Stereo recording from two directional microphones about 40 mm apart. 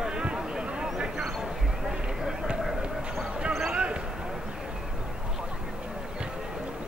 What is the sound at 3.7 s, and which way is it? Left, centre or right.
Basketball bounce, right.